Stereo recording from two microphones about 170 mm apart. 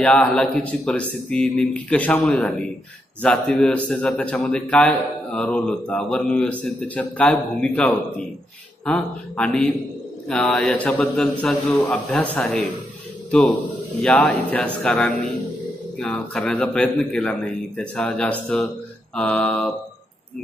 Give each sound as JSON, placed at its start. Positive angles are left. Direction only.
{"t": 0.0, "sound": "a man's voice", "side_deg": 5}
{"t": 14.0, "sound": "a man's voice", "side_deg": 5}